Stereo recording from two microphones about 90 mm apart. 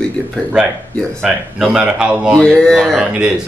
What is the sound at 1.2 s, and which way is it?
Speech, 5° right (ahead or behind).